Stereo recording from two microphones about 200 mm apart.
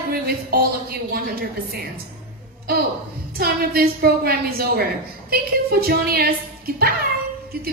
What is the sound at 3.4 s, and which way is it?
A woman's voice, 50° right (ahead or behind).